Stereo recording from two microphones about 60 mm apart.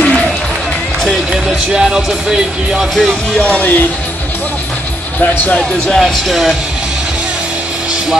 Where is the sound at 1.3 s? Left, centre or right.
Centre.